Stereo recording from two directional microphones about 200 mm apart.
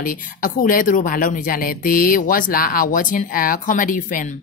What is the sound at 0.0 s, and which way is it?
Speech, 45° left (ahead or behind).